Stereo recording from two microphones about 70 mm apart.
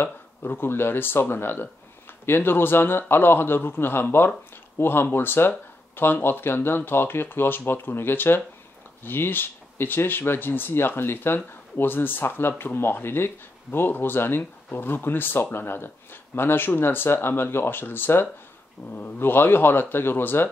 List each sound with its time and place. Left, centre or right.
0.0 s speech: left